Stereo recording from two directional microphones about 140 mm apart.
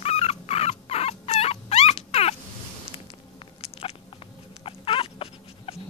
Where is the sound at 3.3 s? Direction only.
45° left (ahead or behind).